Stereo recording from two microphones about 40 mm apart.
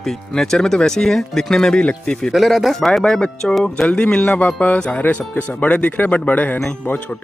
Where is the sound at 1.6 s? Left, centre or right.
Left.